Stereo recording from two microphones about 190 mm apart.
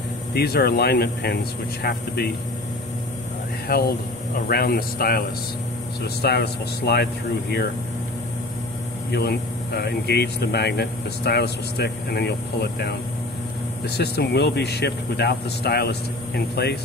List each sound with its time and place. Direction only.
0.3 s speech: 55° left (ahead or behind)
3.6 s speech: 55° left (ahead or behind)
6.2 s speech: 60° left (ahead or behind)
9.1 s speech: 60° left (ahead or behind)